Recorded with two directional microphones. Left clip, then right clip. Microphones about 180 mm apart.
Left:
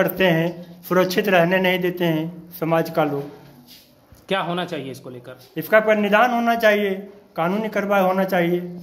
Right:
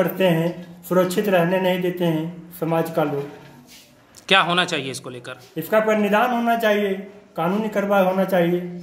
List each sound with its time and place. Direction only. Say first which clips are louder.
0.0 s speech: left 1 dB; 5° right (ahead or behind)
4.3 s speech: right 6 dB; 5° left (ahead or behind)